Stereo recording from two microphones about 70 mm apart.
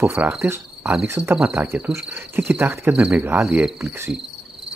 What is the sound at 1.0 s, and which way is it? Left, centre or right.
Speech, right.